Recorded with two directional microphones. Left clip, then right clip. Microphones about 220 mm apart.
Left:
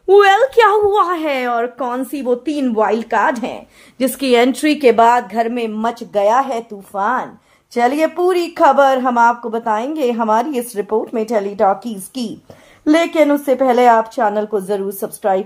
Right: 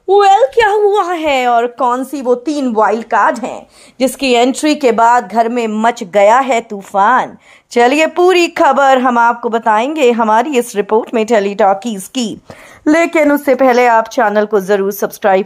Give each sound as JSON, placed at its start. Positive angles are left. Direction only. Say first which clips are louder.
{"t": 0.1, "sound": "a sound", "louder": "right 2 dB", "side_deg": 5}
{"t": 0.8, "sound": "a woman's voice", "louder": "right 3 dB", "side_deg": -5}
{"t": 12.8, "sound": "speech", "louder": "right 3 dB", "side_deg": -35}